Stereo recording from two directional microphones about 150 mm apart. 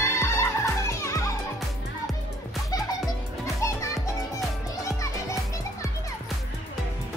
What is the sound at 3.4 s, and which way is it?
Children playing, 20° left (ahead or behind).